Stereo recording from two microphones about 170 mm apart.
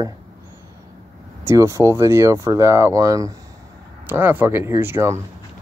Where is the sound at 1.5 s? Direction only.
15° right (ahead or behind).